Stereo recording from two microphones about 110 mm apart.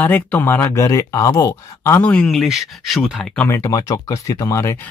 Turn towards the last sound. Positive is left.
turn(degrees=30)  # may be behind; listen again after turning